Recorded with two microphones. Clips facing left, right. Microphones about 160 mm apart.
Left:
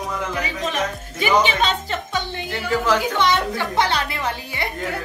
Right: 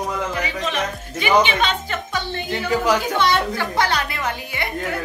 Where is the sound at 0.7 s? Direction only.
40° left (ahead or behind).